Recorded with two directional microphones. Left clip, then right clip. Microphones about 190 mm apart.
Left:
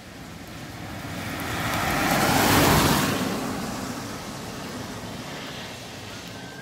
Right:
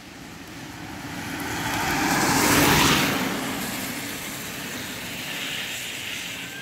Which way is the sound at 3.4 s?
10° right (ahead or behind).